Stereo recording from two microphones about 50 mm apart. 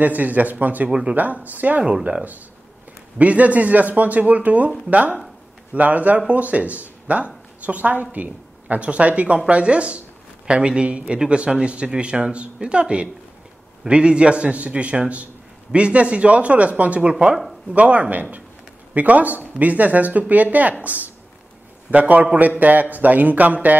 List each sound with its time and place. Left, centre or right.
0.0 s speech: right
0.8 s speech: centre
1.1 s speech: right
3.2 s speech: right
5.8 s speech: right